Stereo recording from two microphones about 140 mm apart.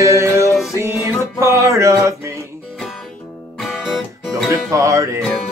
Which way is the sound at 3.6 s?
Centre (ahead or behind).